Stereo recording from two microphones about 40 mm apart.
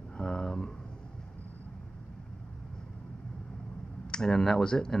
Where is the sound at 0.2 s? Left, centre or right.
Centre.